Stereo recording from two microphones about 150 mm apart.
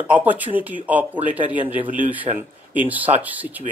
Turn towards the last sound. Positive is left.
turn(degrees=-10)  # may be behind; listen again after turning